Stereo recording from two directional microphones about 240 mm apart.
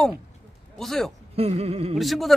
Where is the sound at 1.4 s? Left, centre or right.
Right.